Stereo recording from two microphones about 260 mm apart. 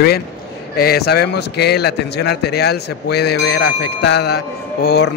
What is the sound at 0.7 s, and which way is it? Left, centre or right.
A man's voice, left.